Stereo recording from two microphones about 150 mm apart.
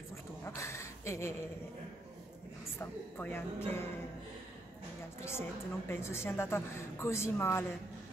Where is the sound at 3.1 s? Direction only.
15° left (ahead or behind).